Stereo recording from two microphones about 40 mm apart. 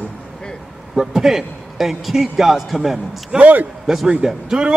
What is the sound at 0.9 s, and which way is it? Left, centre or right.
A man's voice, centre.